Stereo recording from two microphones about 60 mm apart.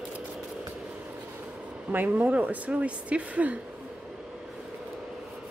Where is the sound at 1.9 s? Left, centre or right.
Right.